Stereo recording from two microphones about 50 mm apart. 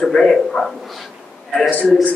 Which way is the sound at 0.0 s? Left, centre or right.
Centre.